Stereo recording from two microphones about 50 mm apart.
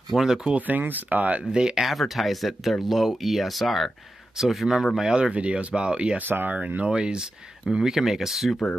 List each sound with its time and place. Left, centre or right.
0.1 s a man's voice: centre
0.6 s speech: right
1.4 s a man's voice: centre
1.9 s a man's voice: centre
5.1 s speech: right
6.1 s speech: right
6.8 s a man's voice: centre